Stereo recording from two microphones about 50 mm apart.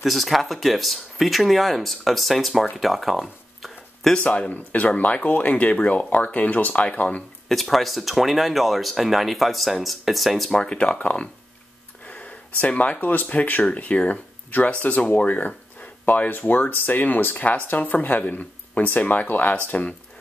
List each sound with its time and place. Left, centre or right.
0.0 s speech: centre
4.2 s speech: left
7.4 s speech: centre
10.5 s speech: centre
12.1 s a sound: left
13.0 s speech: left